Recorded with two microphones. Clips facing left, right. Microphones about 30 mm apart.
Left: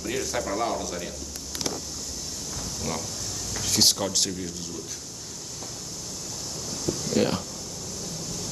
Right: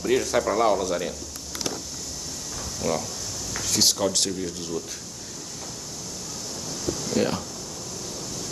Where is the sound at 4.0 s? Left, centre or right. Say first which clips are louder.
Right 3 dB; centre.